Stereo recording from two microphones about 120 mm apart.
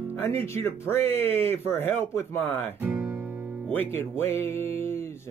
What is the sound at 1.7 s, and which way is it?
Music, 15° left (ahead or behind).